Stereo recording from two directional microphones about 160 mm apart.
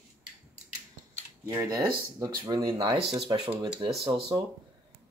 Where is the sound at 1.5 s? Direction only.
25° right (ahead or behind).